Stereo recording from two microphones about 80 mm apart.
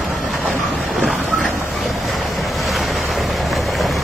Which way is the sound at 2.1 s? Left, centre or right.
Centre.